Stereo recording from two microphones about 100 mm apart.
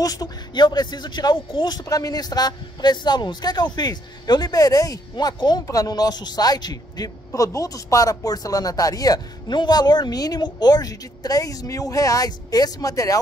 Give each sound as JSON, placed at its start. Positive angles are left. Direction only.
{"t": 0.0, "sound": "speech", "side_deg": 40}